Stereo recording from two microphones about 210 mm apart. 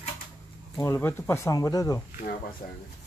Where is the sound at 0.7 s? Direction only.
10° left (ahead or behind).